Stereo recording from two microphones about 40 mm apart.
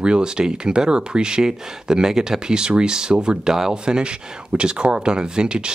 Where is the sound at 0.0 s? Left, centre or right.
Right.